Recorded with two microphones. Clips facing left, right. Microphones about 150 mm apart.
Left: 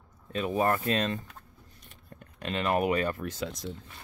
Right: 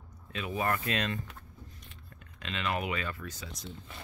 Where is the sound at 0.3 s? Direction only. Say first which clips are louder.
Left 5 dB; 40° left (ahead or behind).